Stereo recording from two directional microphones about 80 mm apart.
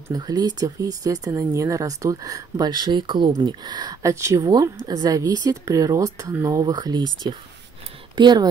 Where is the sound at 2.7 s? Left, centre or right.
Right.